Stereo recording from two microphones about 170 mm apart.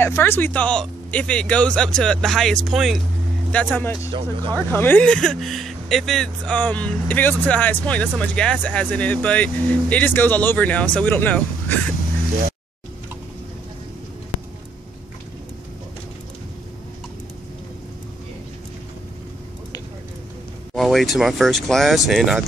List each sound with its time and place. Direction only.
0.0 s speech: 15° left (ahead or behind)
4.1 s speech: 30° right (ahead or behind)
4.6 s speech: 10° left (ahead or behind)
20.7 s speech: centre (ahead or behind)